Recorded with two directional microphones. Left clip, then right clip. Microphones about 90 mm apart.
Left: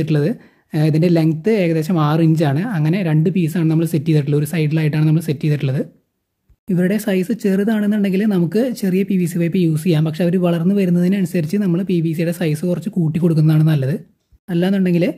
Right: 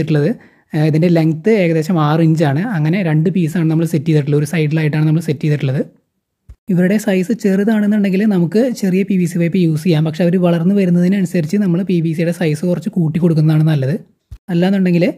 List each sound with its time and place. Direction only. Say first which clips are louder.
0.0 s speech: right 3 dB; 35° right (ahead or behind)